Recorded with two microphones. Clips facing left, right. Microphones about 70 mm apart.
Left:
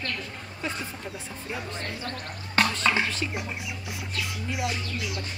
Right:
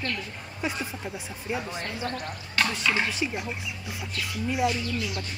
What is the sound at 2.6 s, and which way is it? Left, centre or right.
Chopping, left.